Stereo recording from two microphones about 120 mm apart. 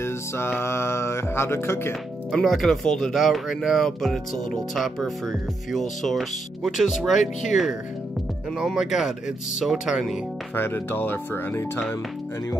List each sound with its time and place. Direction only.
0.0 s music: 20° left (ahead or behind)
2.3 s speech: centre (ahead or behind)
8.5 s speech: 5° right (ahead or behind)
10.5 s speech: 20° left (ahead or behind)